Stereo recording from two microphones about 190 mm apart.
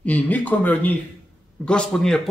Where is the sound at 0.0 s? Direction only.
10° left (ahead or behind).